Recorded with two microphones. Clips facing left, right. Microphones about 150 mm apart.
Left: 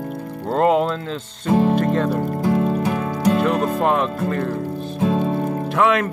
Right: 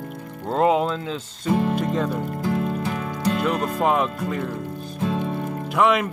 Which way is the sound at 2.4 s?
35° left (ahead or behind).